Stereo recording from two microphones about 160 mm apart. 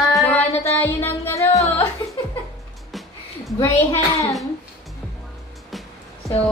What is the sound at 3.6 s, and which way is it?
Speech, 20° left (ahead or behind).